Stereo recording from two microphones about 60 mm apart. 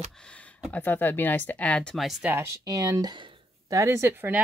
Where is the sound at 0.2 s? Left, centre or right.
Centre.